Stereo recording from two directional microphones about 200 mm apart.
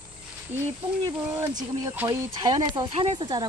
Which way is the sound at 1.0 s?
15° right (ahead or behind).